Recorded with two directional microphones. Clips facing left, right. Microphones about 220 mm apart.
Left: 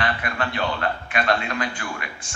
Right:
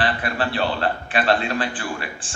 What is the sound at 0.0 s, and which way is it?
A man's voice, 30° right (ahead or behind).